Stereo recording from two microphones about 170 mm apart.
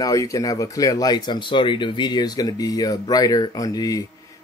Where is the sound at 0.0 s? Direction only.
20° left (ahead or behind).